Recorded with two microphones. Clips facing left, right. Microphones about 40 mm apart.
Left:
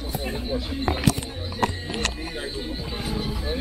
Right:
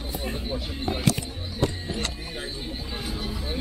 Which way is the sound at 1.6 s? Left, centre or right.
Left.